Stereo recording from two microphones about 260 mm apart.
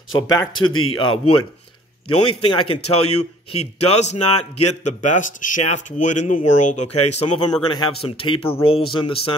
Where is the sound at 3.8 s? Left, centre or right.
Left.